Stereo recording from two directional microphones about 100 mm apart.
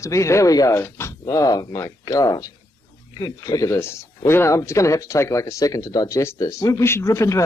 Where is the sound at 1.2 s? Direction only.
40° left (ahead or behind).